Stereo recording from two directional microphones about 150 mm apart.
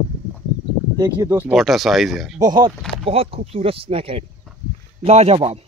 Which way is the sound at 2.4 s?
30° right (ahead or behind).